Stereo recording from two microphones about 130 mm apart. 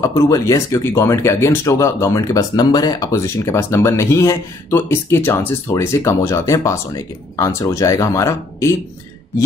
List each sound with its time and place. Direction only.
0.0 s speech: 25° left (ahead or behind)